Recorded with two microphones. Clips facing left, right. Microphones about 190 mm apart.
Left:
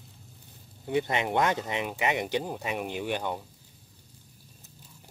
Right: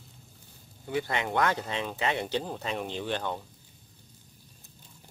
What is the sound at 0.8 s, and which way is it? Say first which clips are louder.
Speech: left 3 dB; 20° left (ahead or behind).